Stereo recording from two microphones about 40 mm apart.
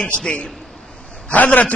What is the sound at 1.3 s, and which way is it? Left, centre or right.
Speech, left.